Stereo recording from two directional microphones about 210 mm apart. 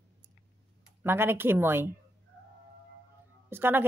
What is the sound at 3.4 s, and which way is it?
Speech, 10° right (ahead or behind).